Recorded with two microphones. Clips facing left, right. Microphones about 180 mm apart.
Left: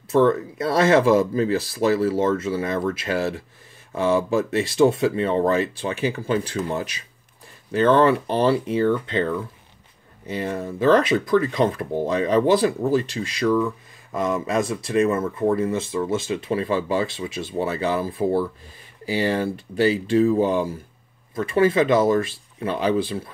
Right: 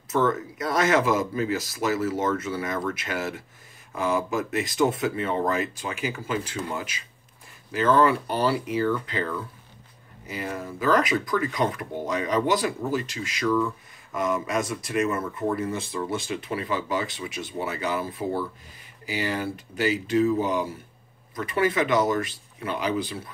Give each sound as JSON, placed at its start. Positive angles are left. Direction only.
{"t": 0.1, "sound": "speech", "side_deg": 30}